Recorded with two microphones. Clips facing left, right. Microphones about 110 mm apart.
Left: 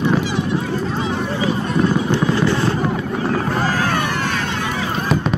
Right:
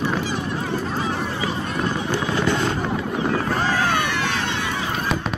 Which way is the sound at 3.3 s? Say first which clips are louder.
Left 2 dB; 40° left (ahead or behind).